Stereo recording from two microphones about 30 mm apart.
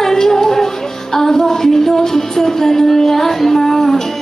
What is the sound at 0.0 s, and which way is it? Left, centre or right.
Music, centre.